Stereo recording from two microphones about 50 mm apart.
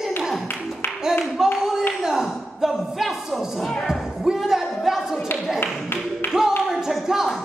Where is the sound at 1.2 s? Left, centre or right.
Centre.